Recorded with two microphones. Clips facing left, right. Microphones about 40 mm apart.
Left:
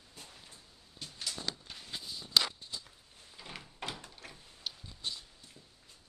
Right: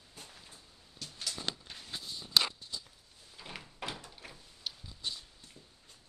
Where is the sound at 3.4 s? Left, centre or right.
Centre.